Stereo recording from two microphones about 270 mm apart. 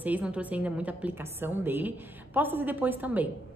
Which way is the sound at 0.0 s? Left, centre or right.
Centre.